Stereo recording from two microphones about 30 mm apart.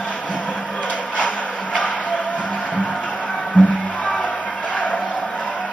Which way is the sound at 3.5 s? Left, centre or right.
Left.